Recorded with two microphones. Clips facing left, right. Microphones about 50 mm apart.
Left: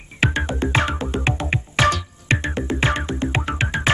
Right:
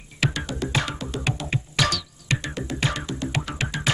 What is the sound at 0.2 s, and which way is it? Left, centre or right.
Music, left.